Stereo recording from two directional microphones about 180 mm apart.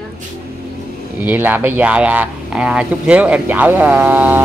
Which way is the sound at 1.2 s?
10° right (ahead or behind).